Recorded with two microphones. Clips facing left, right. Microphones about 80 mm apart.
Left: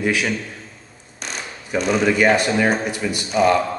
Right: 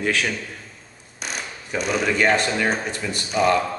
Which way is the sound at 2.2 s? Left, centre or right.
Centre.